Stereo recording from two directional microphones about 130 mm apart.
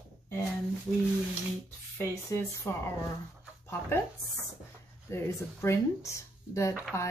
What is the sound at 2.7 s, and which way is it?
Speech, 20° left (ahead or behind).